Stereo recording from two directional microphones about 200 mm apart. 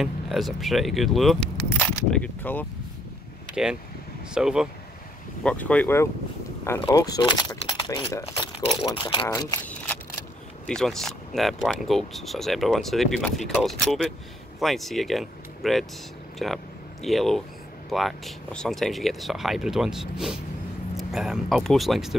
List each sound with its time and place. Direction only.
0.0 s speech: centre (ahead or behind)
4.3 s speech: 5° right (ahead or behind); by 9.6 s 20° left (ahead or behind)
10.7 s speech: centre (ahead or behind)